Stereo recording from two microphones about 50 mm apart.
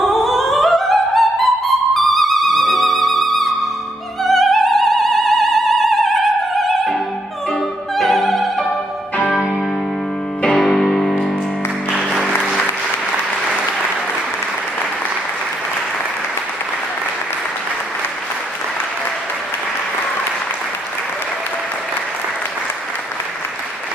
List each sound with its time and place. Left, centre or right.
0.0 s music: centre
8.6 s music: left
10.6 s music: centre